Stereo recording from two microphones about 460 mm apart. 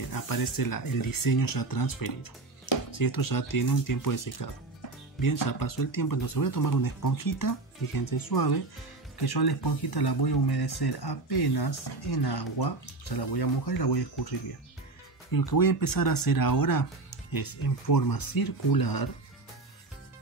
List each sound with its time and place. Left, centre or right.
0.1 s speech: left
15.3 s speech: left